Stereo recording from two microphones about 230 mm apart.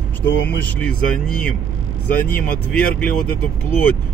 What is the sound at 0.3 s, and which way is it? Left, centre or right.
Speech, left.